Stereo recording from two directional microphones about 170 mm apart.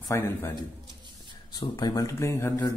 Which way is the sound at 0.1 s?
15° left (ahead or behind).